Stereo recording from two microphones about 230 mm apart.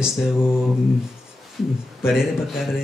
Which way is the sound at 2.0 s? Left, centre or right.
Centre.